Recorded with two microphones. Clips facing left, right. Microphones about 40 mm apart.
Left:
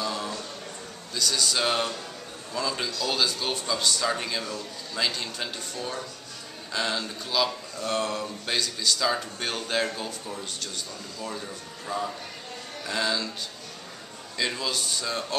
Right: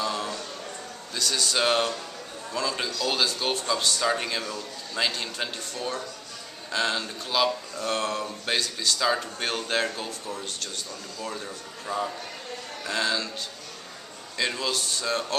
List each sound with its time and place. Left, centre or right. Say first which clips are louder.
0.0 s a sound: right 2 dB; centre
1.1 s a man's voice: even; centre
5.8 s speech: right 3 dB; centre
7.2 s a man's voice: right 2 dB; centre
7.8 s a man's voice: even; centre
14.4 s speech: right 1 dB; centre